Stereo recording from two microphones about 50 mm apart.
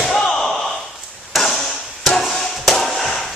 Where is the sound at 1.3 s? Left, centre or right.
Centre.